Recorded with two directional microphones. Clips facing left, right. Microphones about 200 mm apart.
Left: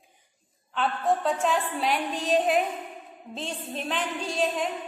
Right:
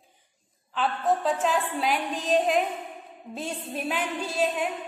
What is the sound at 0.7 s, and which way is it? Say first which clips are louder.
A woman's voice: even; centre (ahead or behind).